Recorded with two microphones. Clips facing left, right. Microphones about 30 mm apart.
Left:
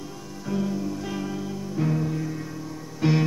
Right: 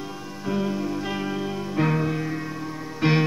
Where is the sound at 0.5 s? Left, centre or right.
Right.